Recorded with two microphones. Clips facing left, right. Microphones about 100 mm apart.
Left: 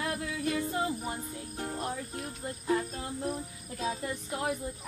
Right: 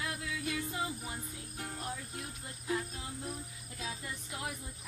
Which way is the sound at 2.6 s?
50° left (ahead or behind).